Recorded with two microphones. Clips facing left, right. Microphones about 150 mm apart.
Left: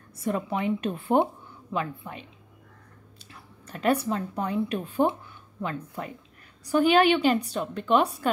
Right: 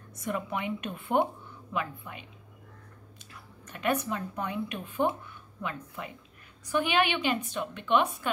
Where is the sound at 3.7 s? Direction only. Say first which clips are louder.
Left 5 dB; 35° left (ahead or behind).